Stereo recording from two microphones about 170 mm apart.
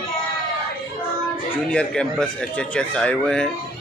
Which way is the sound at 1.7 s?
5° left (ahead or behind).